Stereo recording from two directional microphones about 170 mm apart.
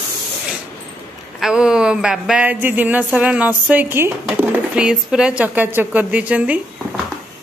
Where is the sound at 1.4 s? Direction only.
5° right (ahead or behind).